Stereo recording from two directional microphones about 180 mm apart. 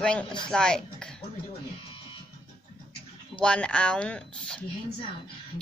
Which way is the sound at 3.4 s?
5° left (ahead or behind).